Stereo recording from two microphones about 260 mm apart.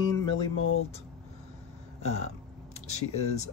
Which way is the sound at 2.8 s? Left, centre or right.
Left.